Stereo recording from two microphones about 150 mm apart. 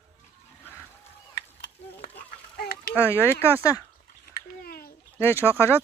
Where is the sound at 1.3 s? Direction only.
90° left.